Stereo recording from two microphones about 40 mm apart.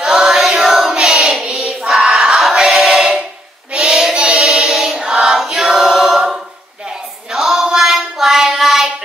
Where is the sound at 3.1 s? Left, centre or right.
Right.